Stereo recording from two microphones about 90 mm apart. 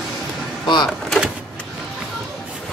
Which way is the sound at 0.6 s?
55° left (ahead or behind).